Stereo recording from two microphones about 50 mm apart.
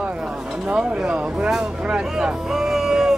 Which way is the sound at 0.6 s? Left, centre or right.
Centre.